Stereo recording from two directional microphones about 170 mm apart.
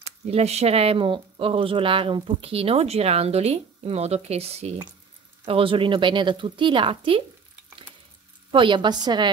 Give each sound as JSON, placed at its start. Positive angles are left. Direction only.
{"t": 0.0, "sound": "speech", "side_deg": -40}
{"t": 8.5, "sound": "speech", "side_deg": -30}